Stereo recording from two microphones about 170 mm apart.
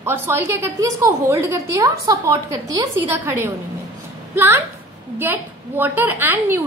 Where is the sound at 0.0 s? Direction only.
15° right (ahead or behind).